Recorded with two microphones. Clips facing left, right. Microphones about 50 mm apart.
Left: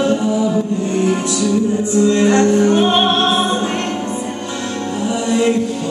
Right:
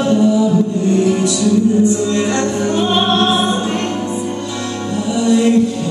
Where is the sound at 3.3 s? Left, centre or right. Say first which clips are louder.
Right 1 dB; centre.